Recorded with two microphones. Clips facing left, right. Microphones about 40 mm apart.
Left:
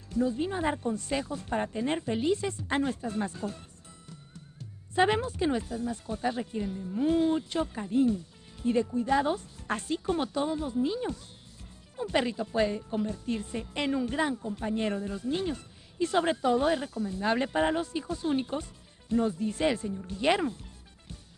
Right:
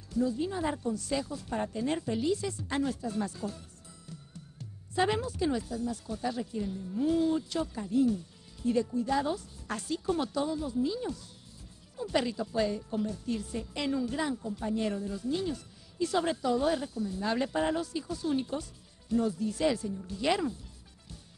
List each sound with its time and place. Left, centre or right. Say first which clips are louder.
0.1 s speech: left 2 dB; left
4.9 s speech: left 3 dB; left